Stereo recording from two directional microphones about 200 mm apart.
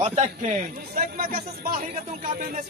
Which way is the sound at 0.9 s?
45° right (ahead or behind).